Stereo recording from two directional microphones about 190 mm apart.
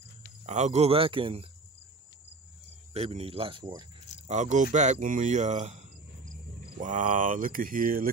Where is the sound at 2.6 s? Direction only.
35° right (ahead or behind).